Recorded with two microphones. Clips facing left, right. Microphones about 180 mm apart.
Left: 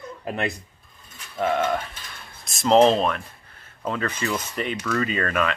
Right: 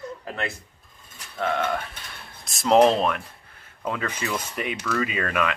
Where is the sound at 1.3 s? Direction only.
5° left (ahead or behind).